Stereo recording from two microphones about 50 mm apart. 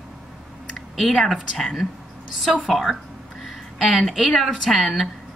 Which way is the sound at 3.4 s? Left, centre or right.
Centre.